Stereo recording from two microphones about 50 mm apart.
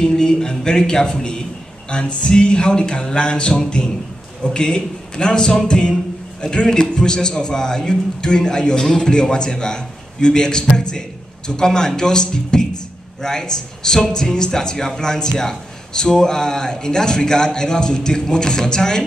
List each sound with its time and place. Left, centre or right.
0.0 s a man's voice: centre
1.9 s a sound: centre
4.6 s a man's voice: centre